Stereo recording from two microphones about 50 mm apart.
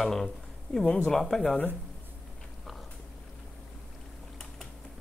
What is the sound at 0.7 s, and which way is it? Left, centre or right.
Speech, centre.